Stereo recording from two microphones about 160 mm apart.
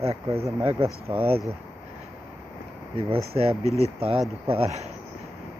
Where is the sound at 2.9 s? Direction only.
35° right (ahead or behind).